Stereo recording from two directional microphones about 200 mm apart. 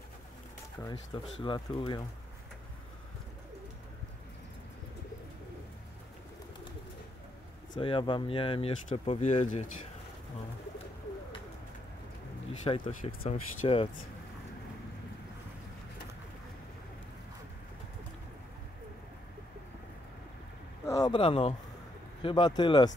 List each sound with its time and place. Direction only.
1.1 s speech: 25° left (ahead or behind)
7.7 s speech: 25° left (ahead or behind)
12.6 s speech: 25° left (ahead or behind)
20.8 s a sound: 20° left (ahead or behind)
22.2 s speech: 25° left (ahead or behind)